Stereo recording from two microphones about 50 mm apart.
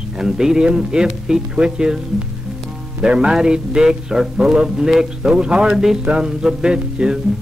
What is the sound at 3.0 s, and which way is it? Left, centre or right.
Speech, centre.